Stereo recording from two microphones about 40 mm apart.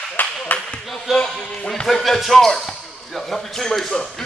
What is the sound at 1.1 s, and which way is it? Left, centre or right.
Speech, centre.